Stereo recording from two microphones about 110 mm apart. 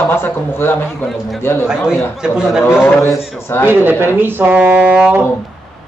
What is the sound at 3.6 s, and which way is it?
A man's voice, 20° right (ahead or behind).